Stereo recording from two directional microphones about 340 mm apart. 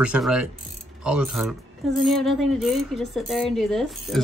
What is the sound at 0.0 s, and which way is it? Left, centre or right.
Speech, centre.